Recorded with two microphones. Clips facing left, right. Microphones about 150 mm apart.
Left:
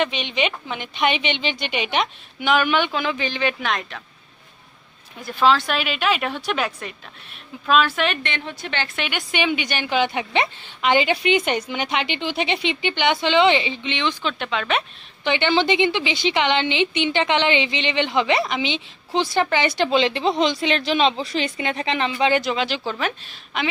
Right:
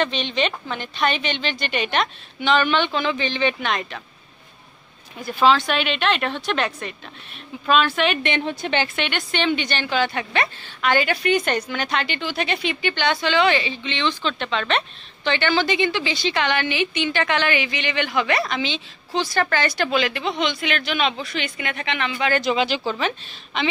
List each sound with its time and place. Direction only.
0.0 s a woman's voice: 15° left (ahead or behind)
5.2 s a woman's voice: centre (ahead or behind)
8.2 s a woman's voice: 20° right (ahead or behind)
8.9 s a woman's voice: 5° left (ahead or behind)
15.3 s a woman's voice: 20° left (ahead or behind)
22.4 s a woman's voice: 5° right (ahead or behind)